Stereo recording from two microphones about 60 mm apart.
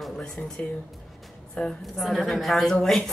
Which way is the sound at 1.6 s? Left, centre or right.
Centre.